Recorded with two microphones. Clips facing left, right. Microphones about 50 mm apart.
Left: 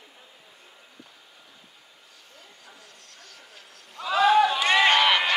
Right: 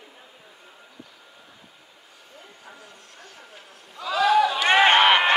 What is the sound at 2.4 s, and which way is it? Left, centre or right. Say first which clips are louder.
Vehicle: right 5 dB; right.